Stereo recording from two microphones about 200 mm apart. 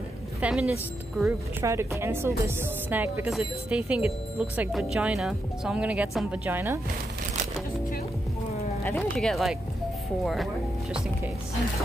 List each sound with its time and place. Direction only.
0.4 s speech: 5° right (ahead or behind)
1.6 s speech: 15° right (ahead or behind)
8.8 s speech: 5° left (ahead or behind)